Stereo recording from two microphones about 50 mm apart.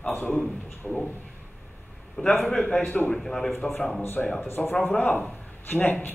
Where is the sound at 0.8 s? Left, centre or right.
Left.